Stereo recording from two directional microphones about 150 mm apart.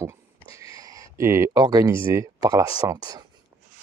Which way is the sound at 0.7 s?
25° right (ahead or behind).